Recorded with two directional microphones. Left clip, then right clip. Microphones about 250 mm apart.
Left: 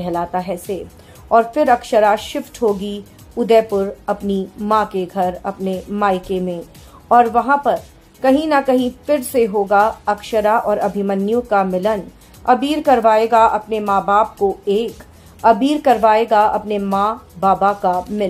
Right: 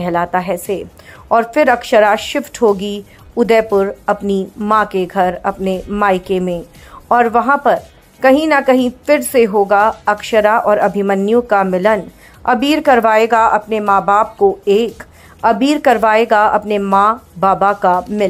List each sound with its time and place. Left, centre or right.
0.0 s speech: centre